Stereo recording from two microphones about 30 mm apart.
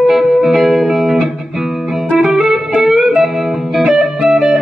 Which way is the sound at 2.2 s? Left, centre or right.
Centre.